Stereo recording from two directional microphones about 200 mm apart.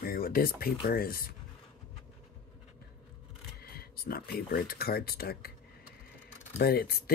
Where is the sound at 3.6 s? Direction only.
50° left (ahead or behind).